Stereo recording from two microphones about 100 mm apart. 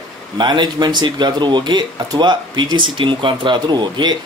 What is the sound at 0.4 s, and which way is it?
Speech, 45° right (ahead or behind).